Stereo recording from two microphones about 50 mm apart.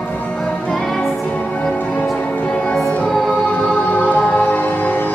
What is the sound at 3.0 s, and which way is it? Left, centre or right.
Music, centre.